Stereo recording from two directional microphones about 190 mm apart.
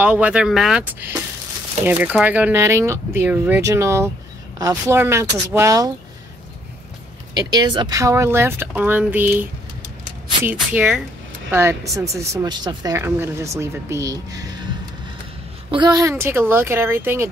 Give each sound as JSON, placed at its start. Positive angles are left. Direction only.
{"t": 0.0, "sound": "speech", "side_deg": -5}
{"t": 7.5, "sound": "speech", "side_deg": -25}
{"t": 15.7, "sound": "speech", "side_deg": -20}